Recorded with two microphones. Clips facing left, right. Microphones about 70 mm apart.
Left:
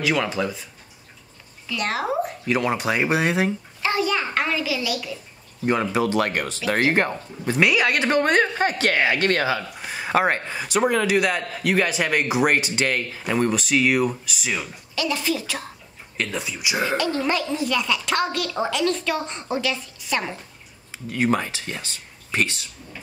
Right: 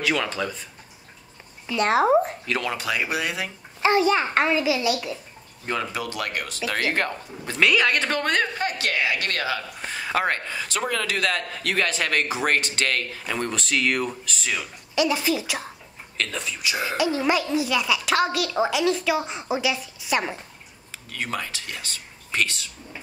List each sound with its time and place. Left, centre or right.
0.0 s speech: centre
1.7 s a child's voice: right
2.6 s speech: left
3.8 s a child's voice: right
5.7 s speech: left
6.6 s speech: left
15.0 s a woman's voice: centre
16.2 s speech: centre
16.9 s a woman's voice: centre
20.9 s speech: left